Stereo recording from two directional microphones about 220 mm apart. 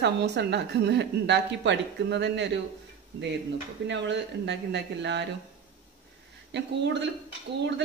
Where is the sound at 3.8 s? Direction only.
55° right (ahead or behind).